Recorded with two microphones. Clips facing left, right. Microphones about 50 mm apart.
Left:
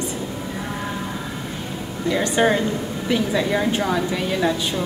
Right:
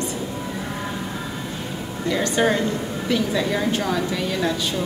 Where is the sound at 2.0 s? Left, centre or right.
Centre.